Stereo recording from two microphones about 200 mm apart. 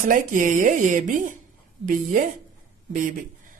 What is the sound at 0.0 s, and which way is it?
Speech, 40° right (ahead or behind).